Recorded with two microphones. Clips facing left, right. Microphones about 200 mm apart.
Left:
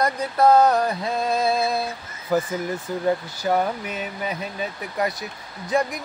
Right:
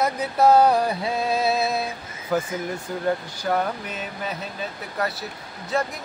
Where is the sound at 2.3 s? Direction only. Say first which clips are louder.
Left 2 dB; 5° left (ahead or behind).